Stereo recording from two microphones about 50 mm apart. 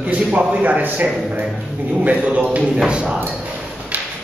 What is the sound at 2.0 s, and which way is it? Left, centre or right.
A man's voice, right.